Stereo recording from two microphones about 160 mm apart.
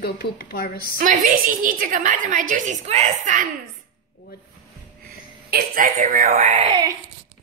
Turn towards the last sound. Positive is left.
turn(degrees=-25)  # may be behind; listen again after turning